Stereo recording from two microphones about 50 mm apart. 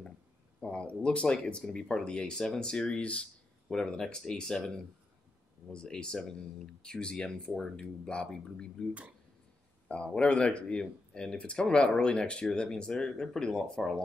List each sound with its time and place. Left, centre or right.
0.6 s speech: centre
3.7 s speech: centre
10.0 s speech: centre